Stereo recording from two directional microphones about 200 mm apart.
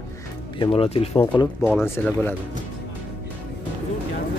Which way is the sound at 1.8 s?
10° left (ahead or behind).